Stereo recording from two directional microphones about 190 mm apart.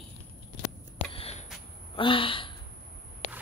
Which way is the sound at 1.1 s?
35° left (ahead or behind).